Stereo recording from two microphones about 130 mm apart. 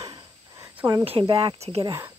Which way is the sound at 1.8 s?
25° right (ahead or behind).